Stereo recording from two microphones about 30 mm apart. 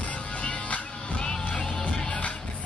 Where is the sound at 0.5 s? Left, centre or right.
Left.